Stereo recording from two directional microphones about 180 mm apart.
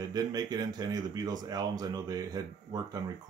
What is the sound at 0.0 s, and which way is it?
Speech, 20° right (ahead or behind).